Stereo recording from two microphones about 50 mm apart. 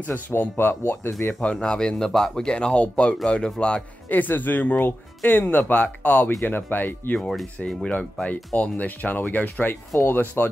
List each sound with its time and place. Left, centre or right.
0.4 s speech: left
1.4 s speech: centre
4.1 s speech: left
7.2 s speech: centre
7.5 s speech: centre
8.5 s speech: left